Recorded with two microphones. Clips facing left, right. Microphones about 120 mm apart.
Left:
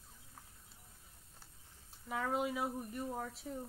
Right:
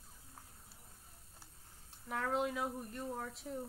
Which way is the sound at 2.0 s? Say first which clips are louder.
Even; 5° left (ahead or behind).